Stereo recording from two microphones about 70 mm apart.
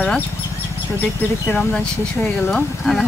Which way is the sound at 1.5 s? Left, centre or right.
Centre.